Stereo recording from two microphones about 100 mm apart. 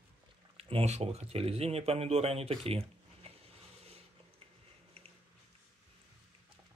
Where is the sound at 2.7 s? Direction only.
80° right.